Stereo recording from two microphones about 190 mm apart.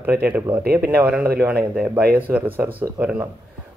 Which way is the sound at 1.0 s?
5° right (ahead or behind).